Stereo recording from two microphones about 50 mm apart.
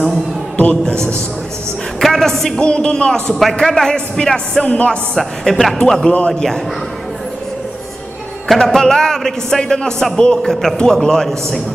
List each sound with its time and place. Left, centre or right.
0.6 s a man's voice: left
2.0 s a woman's voice: centre
2.6 s a man's voice: centre
8.5 s a man's voice: centre